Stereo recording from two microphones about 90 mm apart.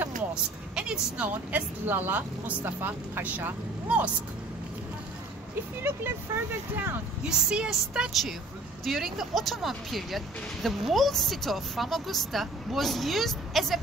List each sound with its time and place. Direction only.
0.3 s speech: 10° right (ahead or behind)
5.8 s speech: 25° right (ahead or behind)
7.2 s a woman's voice: 10° right (ahead or behind)